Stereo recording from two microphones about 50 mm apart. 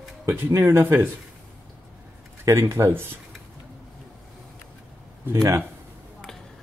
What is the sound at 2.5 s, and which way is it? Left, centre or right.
Speech, right.